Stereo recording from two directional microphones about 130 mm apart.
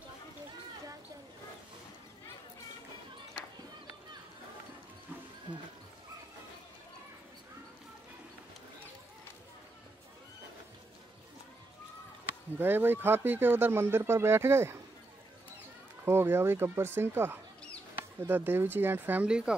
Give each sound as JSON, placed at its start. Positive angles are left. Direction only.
{"t": 5.5, "sound": "speech", "side_deg": -45}
{"t": 12.5, "sound": "speech", "side_deg": -15}
{"t": 16.1, "sound": "speech", "side_deg": -20}